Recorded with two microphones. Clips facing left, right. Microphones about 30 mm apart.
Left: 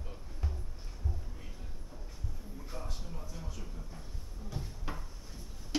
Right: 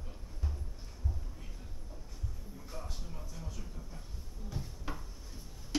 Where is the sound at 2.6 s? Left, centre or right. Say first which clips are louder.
Left 1 dB; centre.